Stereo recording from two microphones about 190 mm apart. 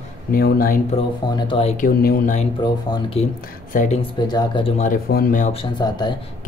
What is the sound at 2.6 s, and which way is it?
Speech, 25° left (ahead or behind).